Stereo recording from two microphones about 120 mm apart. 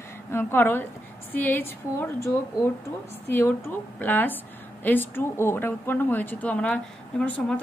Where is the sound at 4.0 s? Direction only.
15° left (ahead or behind).